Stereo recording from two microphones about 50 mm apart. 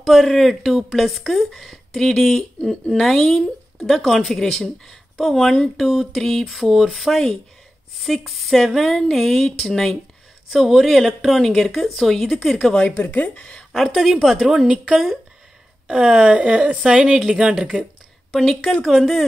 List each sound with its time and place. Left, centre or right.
0.0 s speech: centre
9.1 s a sound: centre
9.7 s speech: centre
10.5 s speech: centre
12.7 s speech: left
13.7 s a woman's voice: centre
16.3 s speech: right
16.8 s a woman's voice: centre
18.9 s speech: centre